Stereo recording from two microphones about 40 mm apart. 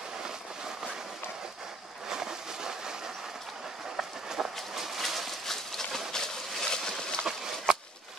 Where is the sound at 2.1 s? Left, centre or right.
Centre.